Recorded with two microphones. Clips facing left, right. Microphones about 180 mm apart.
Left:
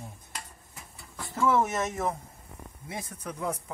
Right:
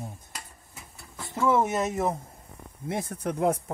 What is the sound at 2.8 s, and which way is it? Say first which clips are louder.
Speech: right 8 dB; 65° right (ahead or behind).